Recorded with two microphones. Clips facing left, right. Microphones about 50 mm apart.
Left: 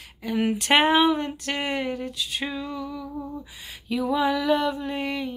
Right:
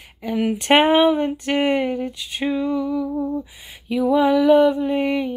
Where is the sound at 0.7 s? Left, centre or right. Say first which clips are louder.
Right 4 dB; right.